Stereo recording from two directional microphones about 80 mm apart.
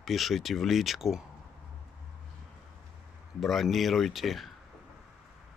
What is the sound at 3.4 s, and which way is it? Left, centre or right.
Speech, centre.